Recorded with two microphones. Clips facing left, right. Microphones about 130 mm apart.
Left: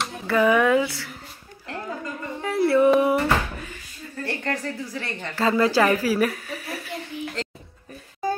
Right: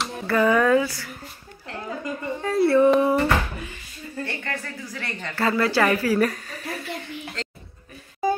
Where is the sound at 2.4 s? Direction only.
10° left (ahead or behind).